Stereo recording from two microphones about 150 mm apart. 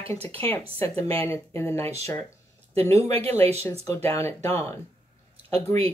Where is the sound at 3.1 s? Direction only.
40° right (ahead or behind).